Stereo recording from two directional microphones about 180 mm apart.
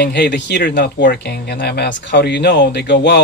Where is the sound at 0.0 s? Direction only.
70° left (ahead or behind).